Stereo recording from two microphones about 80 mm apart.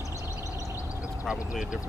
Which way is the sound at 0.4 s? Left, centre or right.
Left.